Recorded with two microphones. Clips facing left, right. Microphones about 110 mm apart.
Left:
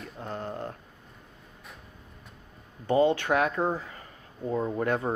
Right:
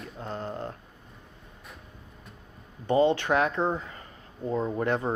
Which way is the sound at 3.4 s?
5° left (ahead or behind).